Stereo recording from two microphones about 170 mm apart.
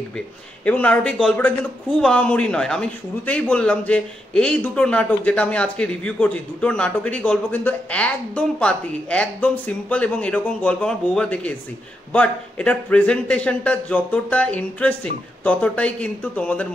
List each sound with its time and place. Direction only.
0.7 s speech: 10° left (ahead or behind)